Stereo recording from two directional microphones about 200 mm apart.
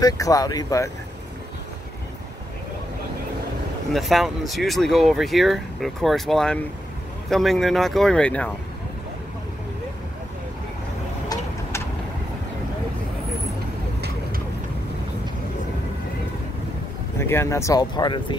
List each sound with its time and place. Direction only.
0.0 s speech: 15° left (ahead or behind)
3.9 s speech: centre (ahead or behind)
17.2 s speech: 15° left (ahead or behind)